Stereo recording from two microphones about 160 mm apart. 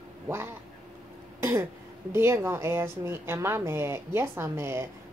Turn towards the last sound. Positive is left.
turn(degrees=-15)  # may be behind; listen again after turning